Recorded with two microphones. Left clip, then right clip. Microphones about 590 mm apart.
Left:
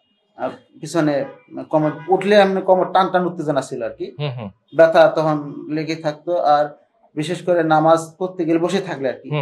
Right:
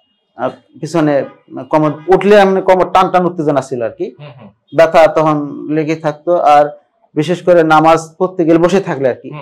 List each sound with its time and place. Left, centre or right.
0.4 s speech: right